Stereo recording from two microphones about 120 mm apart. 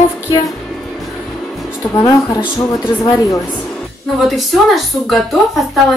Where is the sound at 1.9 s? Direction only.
35° left (ahead or behind).